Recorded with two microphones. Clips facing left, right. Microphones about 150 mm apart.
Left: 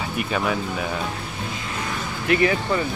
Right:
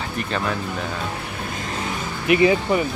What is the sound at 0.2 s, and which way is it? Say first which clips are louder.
Speech: left 1 dB; 5° left (ahead or behind).